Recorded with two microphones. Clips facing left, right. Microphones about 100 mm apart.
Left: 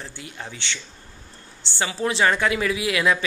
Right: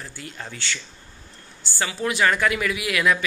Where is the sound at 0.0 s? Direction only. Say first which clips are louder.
Even; 20° left (ahead or behind).